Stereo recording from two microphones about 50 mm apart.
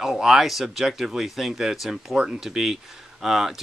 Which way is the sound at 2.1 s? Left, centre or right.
Right.